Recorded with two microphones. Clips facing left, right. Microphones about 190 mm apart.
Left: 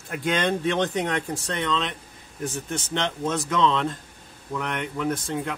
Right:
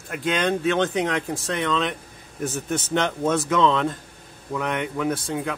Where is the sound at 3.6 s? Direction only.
10° right (ahead or behind).